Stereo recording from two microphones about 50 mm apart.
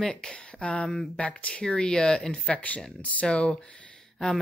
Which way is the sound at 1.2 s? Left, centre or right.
Left.